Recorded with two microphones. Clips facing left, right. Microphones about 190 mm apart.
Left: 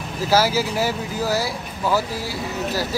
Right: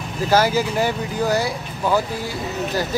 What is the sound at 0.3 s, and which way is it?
Speech, 5° left (ahead or behind).